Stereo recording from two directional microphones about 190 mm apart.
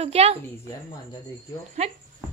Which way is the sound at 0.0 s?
30° right (ahead or behind).